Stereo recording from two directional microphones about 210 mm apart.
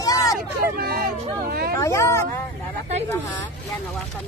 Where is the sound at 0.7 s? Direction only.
45° right (ahead or behind).